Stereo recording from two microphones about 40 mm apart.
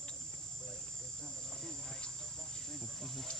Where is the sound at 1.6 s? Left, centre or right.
Centre.